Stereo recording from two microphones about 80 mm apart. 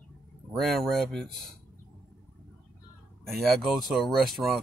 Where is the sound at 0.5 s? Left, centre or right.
Centre.